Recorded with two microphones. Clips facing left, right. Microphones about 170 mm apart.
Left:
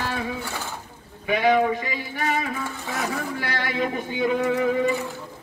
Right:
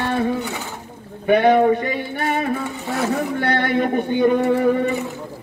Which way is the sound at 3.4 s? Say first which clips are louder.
Right 7 dB; 55° right (ahead or behind).